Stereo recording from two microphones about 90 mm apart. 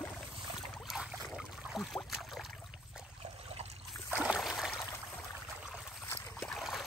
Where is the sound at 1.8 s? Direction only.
Centre (ahead or behind).